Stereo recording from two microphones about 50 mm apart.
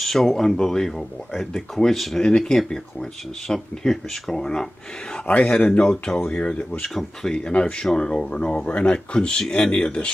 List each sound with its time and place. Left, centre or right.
0.0 s speech: centre
5.2 s speech: left